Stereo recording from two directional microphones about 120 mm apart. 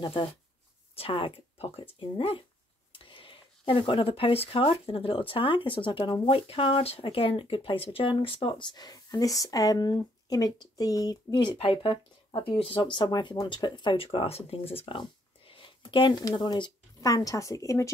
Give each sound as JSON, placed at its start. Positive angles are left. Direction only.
{"t": 0.0, "sound": "speech", "side_deg": 45}